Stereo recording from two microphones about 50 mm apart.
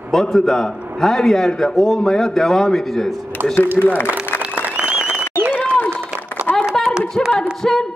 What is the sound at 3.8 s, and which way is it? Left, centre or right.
Speech, left.